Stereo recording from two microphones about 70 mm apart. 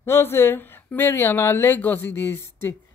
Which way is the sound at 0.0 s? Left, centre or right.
Left.